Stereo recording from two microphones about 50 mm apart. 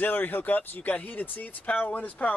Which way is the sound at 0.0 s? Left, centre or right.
Left.